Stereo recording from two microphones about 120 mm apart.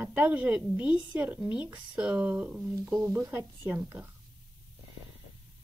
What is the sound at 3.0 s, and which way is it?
Speech, 20° right (ahead or behind).